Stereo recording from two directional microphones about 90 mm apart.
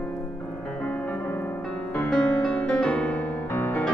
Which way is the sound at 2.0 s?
10° left (ahead or behind).